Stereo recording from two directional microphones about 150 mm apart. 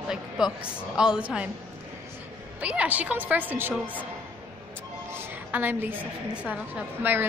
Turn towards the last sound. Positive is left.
turn(degrees=-10)  # may be behind; listen again after turning